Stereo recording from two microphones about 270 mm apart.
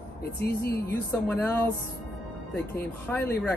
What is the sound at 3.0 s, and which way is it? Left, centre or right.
Speech, centre.